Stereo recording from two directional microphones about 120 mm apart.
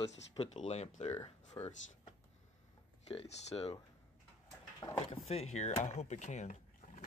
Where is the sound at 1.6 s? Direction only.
25° left (ahead or behind).